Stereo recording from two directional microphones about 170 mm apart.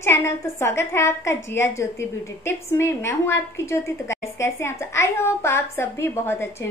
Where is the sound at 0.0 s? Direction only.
15° left (ahead or behind).